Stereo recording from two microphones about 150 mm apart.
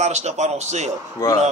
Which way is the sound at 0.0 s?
50° right (ahead or behind).